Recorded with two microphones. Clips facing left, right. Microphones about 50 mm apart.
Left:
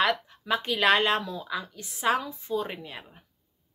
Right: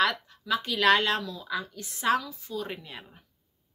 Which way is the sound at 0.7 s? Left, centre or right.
Left.